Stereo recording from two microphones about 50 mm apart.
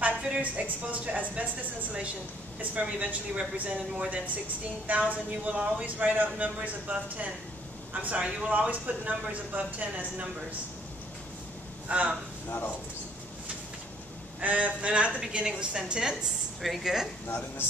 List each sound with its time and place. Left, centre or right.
0.0 s a woman's voice: right
11.9 s a woman's voice: right
12.4 s speech: left
14.4 s a woman's voice: right; by 17.1 s centre